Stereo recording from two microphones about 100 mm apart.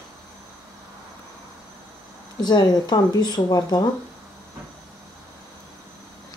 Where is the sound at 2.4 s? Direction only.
45° left (ahead or behind).